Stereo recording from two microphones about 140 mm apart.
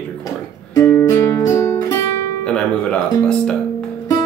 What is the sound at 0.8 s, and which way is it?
Music, 15° left (ahead or behind).